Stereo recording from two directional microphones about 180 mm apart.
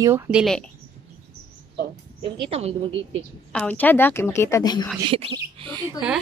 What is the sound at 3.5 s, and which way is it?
A woman's voice, 5° left (ahead or behind).